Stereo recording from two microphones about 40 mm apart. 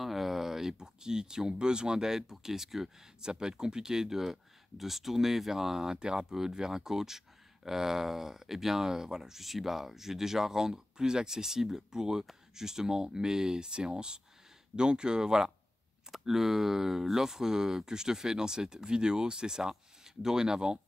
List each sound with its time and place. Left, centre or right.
0.0 s speech: centre; by 20.8 s right